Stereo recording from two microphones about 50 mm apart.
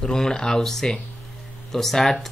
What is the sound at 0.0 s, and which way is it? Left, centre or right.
Speech, centre.